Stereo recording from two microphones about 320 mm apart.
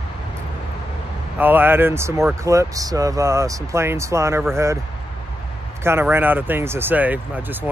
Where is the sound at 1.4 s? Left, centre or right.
Centre.